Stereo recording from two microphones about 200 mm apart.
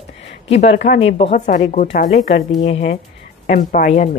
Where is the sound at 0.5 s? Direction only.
35° left (ahead or behind).